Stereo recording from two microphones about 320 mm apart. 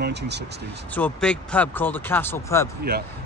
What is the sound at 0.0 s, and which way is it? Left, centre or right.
Speech, right.